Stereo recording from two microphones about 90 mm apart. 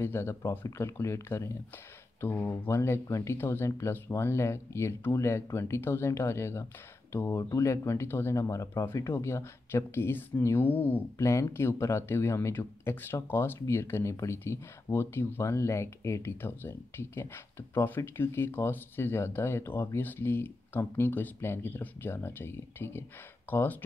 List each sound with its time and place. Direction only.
0.0 s speech: 25° left (ahead or behind)
11.1 s speech: 35° left (ahead or behind)